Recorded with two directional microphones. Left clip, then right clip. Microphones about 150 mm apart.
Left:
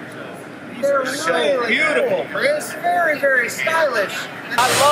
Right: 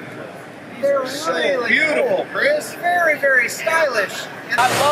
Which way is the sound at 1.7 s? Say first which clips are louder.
Right 1 dB; 15° left (ahead or behind).